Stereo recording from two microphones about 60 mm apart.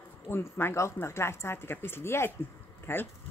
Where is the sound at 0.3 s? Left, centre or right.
Left.